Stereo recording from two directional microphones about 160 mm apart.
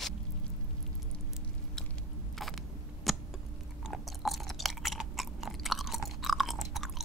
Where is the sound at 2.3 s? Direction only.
Centre (ahead or behind).